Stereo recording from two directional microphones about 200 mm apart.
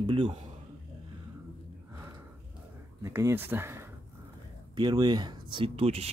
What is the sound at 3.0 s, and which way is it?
Speech, 15° right (ahead or behind).